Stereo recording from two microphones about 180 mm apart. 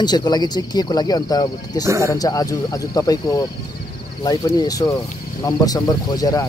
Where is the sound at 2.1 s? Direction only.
20° left (ahead or behind).